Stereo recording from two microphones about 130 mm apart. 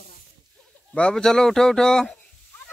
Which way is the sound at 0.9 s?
5° left (ahead or behind).